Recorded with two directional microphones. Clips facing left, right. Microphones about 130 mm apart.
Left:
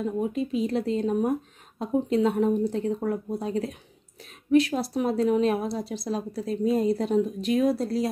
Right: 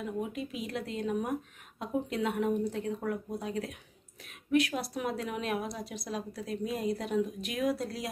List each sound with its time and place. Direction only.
0.0 s a woman's voice: 30° left (ahead or behind)